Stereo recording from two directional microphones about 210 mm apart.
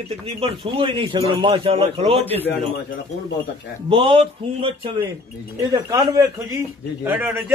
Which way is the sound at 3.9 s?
25° right (ahead or behind).